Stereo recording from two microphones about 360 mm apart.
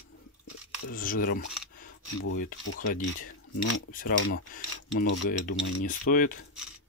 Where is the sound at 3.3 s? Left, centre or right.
Left.